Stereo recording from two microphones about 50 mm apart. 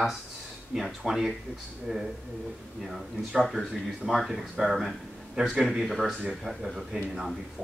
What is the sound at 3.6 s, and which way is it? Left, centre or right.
Speech, centre.